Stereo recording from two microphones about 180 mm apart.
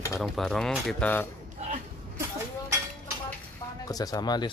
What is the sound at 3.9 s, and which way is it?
Speech, 20° left (ahead or behind).